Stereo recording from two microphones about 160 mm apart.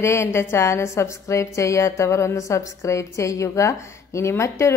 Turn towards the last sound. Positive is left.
turn(degrees=15)  # may be behind; listen again after turning